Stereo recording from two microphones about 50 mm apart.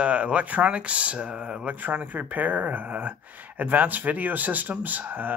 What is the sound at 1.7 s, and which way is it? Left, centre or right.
Speech, right.